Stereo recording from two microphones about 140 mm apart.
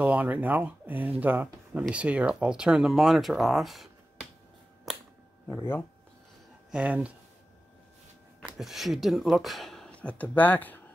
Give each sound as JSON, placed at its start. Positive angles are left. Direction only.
{"t": 0.0, "sound": "speech", "side_deg": -10}
{"t": 5.5, "sound": "speech", "side_deg": 20}
{"t": 6.7, "sound": "speech", "side_deg": -10}
{"t": 8.5, "sound": "speech", "side_deg": 0}